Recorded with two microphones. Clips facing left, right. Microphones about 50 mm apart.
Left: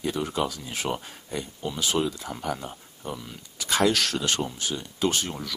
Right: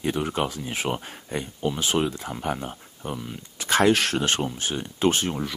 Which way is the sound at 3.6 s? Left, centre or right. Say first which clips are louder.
Right 3 dB; right.